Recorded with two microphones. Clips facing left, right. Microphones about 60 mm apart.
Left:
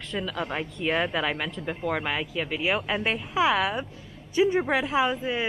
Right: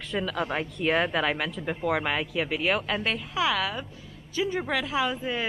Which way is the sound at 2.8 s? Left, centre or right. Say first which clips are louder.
Left 1 dB; centre.